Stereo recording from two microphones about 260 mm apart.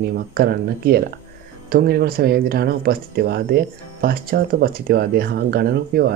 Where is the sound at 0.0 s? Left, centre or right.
Right.